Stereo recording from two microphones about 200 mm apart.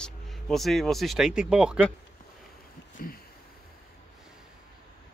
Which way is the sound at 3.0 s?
45° left (ahead or behind).